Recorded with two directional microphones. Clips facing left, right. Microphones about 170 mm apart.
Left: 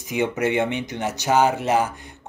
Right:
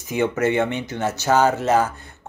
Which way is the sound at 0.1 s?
15° left (ahead or behind).